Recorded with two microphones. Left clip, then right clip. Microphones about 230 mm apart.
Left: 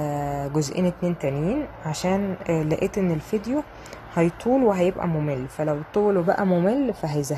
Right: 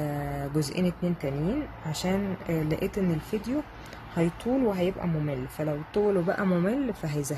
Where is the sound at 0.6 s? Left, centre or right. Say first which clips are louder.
Left 5 dB; left.